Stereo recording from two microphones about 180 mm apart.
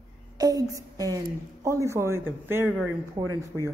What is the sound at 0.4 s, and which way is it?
A woman's voice, 20° right (ahead or behind).